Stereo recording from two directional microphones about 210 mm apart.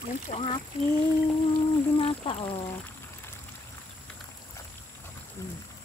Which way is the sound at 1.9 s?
25° left (ahead or behind).